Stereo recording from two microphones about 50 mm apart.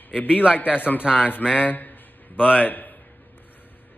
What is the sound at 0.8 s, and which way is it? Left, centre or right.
A man's voice, left.